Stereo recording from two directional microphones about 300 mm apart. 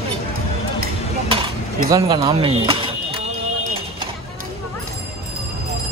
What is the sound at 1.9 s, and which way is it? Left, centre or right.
Speech, centre.